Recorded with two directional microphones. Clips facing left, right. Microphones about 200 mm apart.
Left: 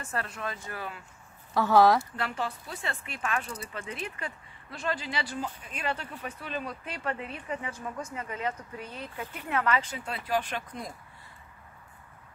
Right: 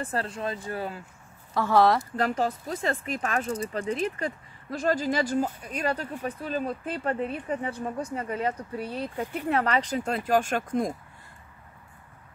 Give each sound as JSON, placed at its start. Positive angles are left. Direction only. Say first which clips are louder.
{"t": 0.0, "sound": "speech", "louder": "right 5 dB", "side_deg": -30}
{"t": 1.5, "sound": "speech", "louder": "even", "side_deg": 0}
{"t": 2.1, "sound": "speech", "louder": "right 7 dB", "side_deg": -40}